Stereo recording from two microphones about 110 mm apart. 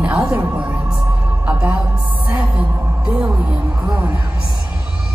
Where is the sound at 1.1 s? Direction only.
20° right (ahead or behind).